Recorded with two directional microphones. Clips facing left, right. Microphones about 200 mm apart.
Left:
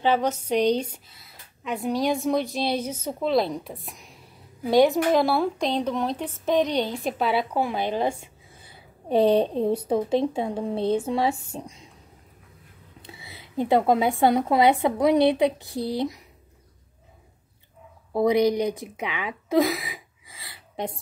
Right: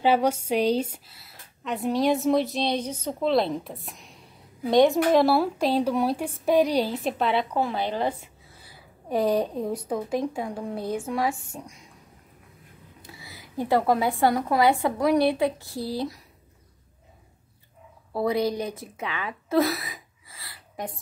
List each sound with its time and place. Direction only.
0.0 s a woman's voice: 10° right (ahead or behind); by 11.9 s 25° left (ahead or behind)
13.1 s a woman's voice: 25° left (ahead or behind)
18.1 s speech: 15° left (ahead or behind)